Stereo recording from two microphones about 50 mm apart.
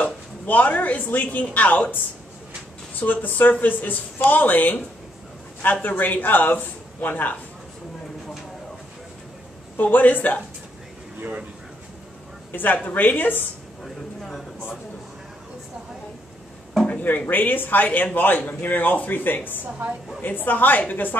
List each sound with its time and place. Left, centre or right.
0.0 s a woman's voice: left
3.0 s speech: left
9.8 s speech: left
11.1 s speech: right
12.5 s speech: left
17.3 s speech: left